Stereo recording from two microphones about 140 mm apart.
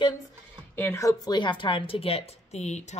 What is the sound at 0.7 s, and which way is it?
Speech, 20° left (ahead or behind).